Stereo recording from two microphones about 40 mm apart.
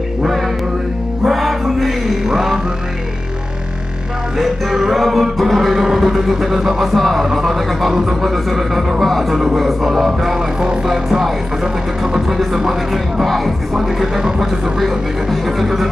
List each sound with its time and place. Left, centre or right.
1.2 s music: centre
2.2 s music: centre
4.4 s music: centre